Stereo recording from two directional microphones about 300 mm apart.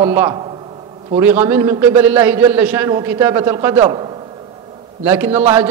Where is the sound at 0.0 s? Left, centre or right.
Centre.